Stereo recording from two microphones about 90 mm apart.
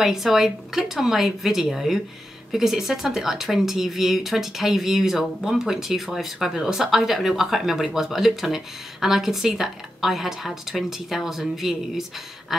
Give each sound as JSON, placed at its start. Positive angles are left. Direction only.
{"t": 0.0, "sound": "speech", "side_deg": -5}